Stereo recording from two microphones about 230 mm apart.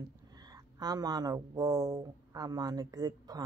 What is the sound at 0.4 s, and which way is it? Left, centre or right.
A man's voice, centre.